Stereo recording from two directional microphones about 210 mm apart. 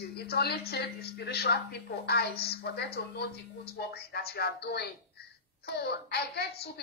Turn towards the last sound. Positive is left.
turn(degrees=50)  # may be behind; listen again after turning